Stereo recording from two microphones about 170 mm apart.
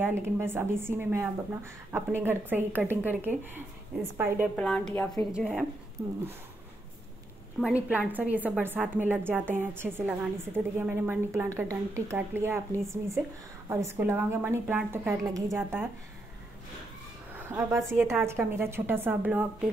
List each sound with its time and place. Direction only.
0.0 s a woman's voice: 15° right (ahead or behind)
4.6 s a woman's voice: 5° left (ahead or behind); by 6.1 s 15° right (ahead or behind)
7.6 s a woman's voice: 10° right (ahead or behind)
17.5 s a woman's voice: 15° right (ahead or behind)